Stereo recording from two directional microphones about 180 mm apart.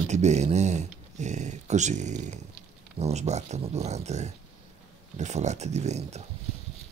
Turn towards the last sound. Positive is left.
turn(degrees=-40)  # may be behind; listen again after turning